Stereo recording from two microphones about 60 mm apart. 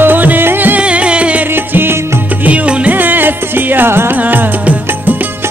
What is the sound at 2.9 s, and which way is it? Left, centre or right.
Music, right.